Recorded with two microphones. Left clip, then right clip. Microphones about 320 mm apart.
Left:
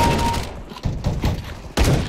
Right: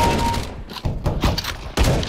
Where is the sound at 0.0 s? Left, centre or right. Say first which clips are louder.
Even; centre.